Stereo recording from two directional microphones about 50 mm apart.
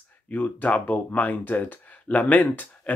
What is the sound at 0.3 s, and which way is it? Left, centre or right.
Speech, left.